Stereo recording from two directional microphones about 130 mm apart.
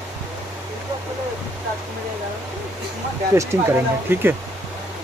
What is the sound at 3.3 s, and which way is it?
Speech, 20° right (ahead or behind).